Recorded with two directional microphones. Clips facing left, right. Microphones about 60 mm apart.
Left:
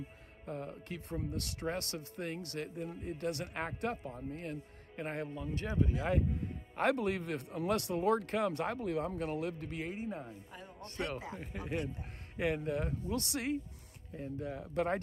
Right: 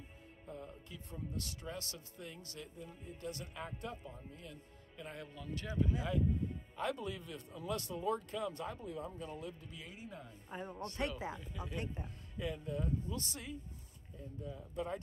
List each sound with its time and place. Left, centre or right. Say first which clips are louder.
0.5 s speech: left 8 dB; left
5.3 s a man's voice: left 5 dB; left
6.8 s speech: left 8 dB; left
9.9 s a man's voice: left 9 dB; left
10.5 s speech: right 5 dB; right
11.3 s speech: left 6 dB; left
12.4 s speech: left 6 dB; left